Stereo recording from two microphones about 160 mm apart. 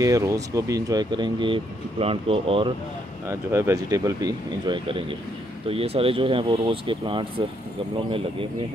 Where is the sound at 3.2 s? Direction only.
15° right (ahead or behind).